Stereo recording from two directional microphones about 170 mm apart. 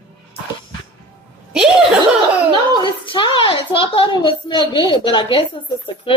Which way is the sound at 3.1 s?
30° left (ahead or behind).